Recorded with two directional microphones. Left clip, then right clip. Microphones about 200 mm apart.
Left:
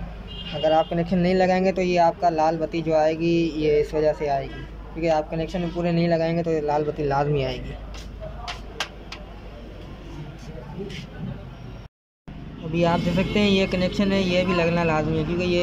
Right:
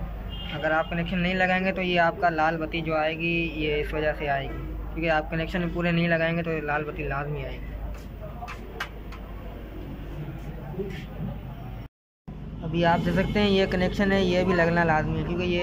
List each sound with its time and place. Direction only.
0.6 s speech: 25° left (ahead or behind); by 7.5 s 40° left (ahead or behind)
12.7 s speech: 15° left (ahead or behind)